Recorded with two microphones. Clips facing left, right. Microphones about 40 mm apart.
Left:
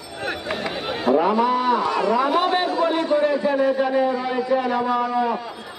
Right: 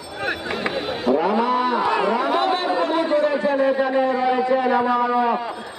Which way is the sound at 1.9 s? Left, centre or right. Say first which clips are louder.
Even; right.